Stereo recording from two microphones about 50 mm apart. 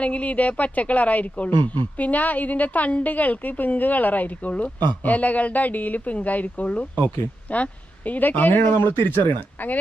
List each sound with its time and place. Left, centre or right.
0.0 s speech: left